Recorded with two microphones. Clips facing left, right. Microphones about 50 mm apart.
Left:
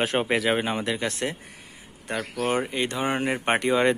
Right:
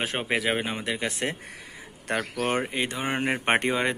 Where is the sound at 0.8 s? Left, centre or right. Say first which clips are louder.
Left 2 dB; centre.